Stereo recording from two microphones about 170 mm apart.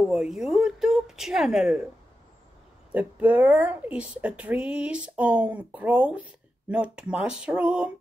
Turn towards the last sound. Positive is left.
turn(degrees=-5)  # may be behind; listen again after turning